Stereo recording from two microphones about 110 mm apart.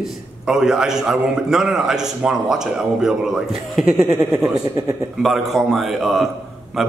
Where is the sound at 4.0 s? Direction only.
25° right (ahead or behind).